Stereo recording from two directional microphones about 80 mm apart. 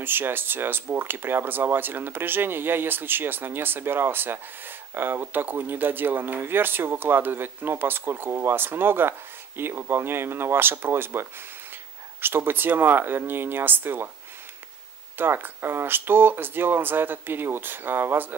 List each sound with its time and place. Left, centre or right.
0.0 s speech: right
15.1 s speech: right